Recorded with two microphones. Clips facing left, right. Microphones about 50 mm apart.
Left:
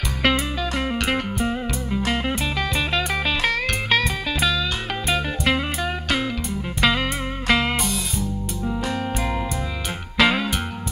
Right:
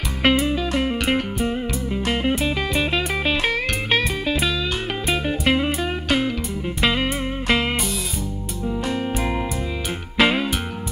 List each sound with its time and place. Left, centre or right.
0.2 s music: centre
10.1 s music: centre